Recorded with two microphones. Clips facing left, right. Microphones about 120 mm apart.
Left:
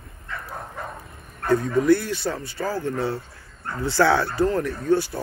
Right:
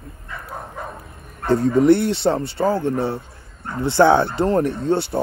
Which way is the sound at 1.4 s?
25° right (ahead or behind).